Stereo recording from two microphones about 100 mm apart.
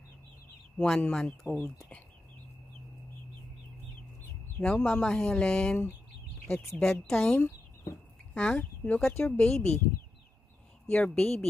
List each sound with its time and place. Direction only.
0.7 s speech: 5° left (ahead or behind)
4.6 s speech: 5° left (ahead or behind)
6.8 s speech: 5° left (ahead or behind)
10.9 s speech: 10° left (ahead or behind)